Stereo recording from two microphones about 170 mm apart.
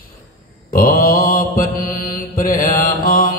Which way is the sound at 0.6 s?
55° left (ahead or behind).